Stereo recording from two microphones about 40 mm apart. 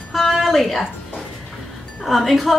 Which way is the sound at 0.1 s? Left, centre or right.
Centre.